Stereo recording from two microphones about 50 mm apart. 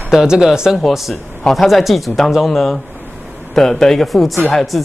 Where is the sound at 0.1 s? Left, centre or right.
Centre.